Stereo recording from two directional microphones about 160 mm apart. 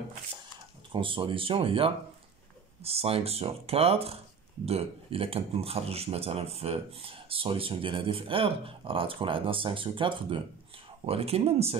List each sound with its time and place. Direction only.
0.9 s speech: 30° right (ahead or behind)